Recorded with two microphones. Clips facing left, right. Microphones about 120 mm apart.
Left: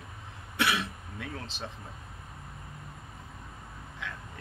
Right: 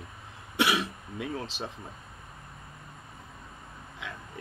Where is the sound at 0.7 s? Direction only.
5° right (ahead or behind).